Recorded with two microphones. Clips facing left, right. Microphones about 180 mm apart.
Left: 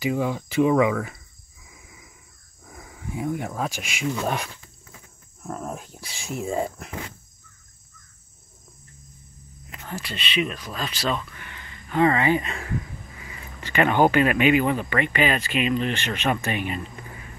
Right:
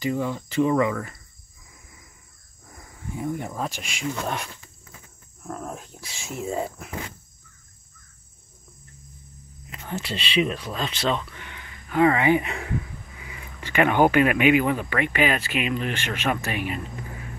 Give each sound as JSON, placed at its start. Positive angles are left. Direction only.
{"t": 0.0, "sound": "speech", "side_deg": 5}
{"t": 3.2, "sound": "speech", "side_deg": 5}
{"t": 5.5, "sound": "speech", "side_deg": 20}
{"t": 6.0, "sound": "speech", "side_deg": 0}
{"t": 9.8, "sound": "speech", "side_deg": -25}